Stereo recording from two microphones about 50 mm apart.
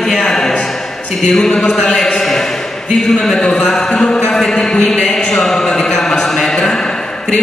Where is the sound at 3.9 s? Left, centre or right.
Centre.